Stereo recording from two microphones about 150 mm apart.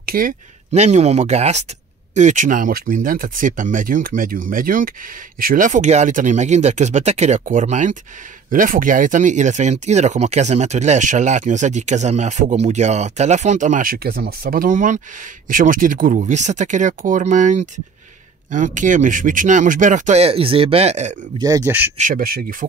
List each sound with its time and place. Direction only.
0.0 s speech: 70° right (ahead or behind)
0.7 s speech: 50° right (ahead or behind)
21.4 s speech: 25° right (ahead or behind)
21.9 s speech: 65° right (ahead or behind)